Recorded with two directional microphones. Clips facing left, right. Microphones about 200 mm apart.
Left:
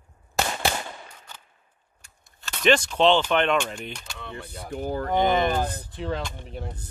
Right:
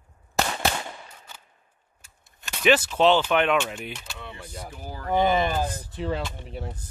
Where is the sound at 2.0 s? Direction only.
5° right (ahead or behind).